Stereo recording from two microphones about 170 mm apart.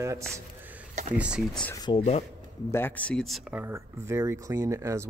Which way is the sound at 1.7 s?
25° left (ahead or behind).